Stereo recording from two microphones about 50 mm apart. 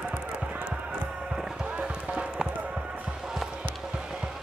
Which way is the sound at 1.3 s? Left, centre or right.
Centre.